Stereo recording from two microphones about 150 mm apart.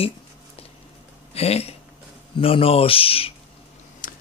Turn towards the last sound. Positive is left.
turn(degrees=65)  # may be behind; listen again after turning